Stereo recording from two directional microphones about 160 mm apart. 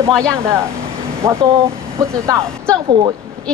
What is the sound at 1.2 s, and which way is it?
Speech, 20° right (ahead or behind).